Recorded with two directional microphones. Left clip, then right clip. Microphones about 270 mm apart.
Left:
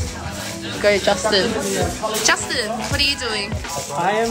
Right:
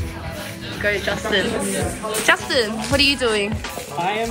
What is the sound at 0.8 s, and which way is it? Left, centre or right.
Speech, centre.